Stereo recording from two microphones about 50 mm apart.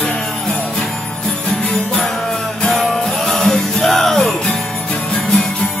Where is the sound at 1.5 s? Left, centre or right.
Centre.